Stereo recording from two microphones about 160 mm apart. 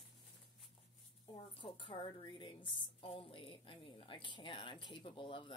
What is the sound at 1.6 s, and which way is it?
A woman's voice, 30° left (ahead or behind).